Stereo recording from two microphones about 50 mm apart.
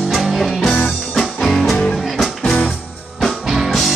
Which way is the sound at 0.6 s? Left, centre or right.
Centre.